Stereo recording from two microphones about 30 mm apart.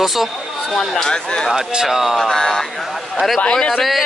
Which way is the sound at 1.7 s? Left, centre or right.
Centre.